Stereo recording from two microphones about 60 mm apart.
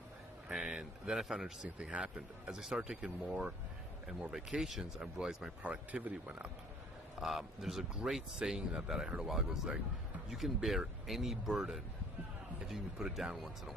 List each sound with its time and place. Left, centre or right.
0.5 s a sound: centre
1.8 s speech: centre
5.6 s speech: right
7.2 s speech: centre